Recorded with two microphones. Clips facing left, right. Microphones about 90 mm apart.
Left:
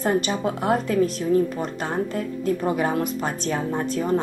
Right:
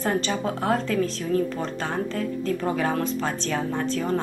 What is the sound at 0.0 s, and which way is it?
A woman's voice, 20° left (ahead or behind).